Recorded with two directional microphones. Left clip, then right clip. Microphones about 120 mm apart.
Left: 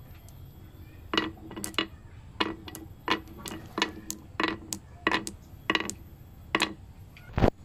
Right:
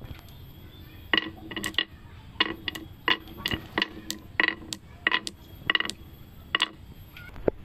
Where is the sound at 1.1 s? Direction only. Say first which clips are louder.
Right 4 dB; 10° left (ahead or behind).